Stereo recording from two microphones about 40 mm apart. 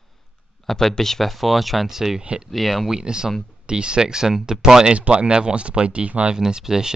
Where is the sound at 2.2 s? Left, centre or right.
Right.